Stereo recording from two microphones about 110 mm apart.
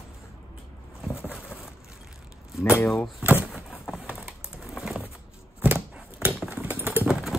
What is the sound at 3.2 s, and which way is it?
Speech, 15° right (ahead or behind).